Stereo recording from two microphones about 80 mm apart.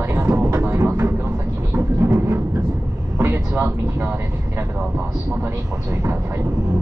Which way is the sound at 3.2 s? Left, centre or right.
Right.